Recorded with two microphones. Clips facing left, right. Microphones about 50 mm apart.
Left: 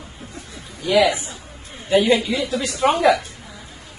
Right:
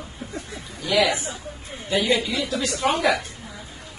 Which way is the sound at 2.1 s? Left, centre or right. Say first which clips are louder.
Left 4 dB; left.